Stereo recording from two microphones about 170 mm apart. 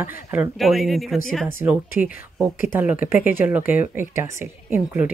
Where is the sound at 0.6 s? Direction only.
Centre (ahead or behind).